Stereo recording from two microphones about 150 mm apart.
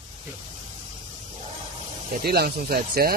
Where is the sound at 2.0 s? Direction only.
75° right (ahead or behind).